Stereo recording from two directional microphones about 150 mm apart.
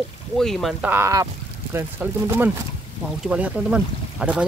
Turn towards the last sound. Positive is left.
turn(degrees=-5)  # may be behind; listen again after turning